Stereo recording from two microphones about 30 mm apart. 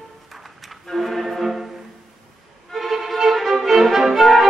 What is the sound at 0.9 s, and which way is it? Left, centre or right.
Music, centre.